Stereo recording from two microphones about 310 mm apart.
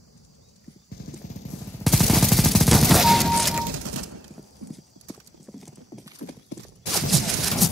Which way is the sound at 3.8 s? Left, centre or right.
Right.